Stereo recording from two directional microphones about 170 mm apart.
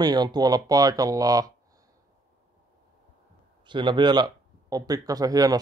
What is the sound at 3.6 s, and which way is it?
Speech, 25° right (ahead or behind).